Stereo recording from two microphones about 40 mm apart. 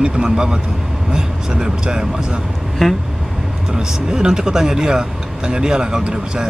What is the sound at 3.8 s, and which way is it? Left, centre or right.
Speech, centre.